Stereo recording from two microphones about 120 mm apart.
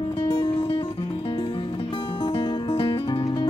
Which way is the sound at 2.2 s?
50° left (ahead or behind).